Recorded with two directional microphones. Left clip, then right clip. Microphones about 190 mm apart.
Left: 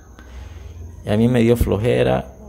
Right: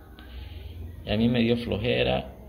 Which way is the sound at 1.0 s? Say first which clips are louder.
Left 8 dB; 35° left (ahead or behind).